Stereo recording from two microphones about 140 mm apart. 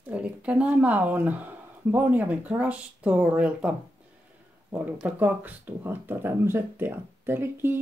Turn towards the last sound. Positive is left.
turn(degrees=-15)  # may be behind; listen again after turning